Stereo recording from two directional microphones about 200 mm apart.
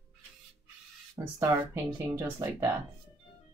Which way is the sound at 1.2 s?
15° right (ahead or behind).